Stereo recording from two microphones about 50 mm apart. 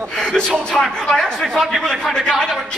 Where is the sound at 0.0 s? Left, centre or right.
Centre.